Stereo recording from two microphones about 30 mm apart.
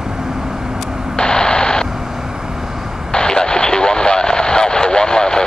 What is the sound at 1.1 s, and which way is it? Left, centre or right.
Radio, left.